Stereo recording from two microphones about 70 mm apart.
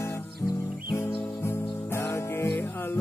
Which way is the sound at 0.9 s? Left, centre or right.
Left.